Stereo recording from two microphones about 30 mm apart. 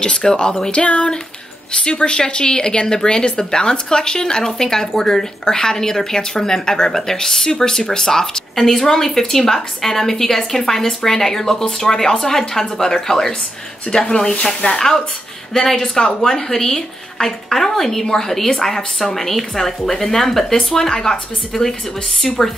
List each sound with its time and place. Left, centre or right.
0.0 s a woman's voice: left
0.7 s a sound: left
1.7 s a woman's voice: left
14.6 s speech: left
15.5 s speech: centre
22.4 s speech: centre